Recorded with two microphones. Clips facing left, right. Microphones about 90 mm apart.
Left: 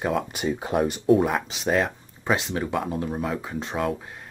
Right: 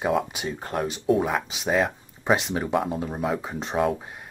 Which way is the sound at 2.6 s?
10° right (ahead or behind).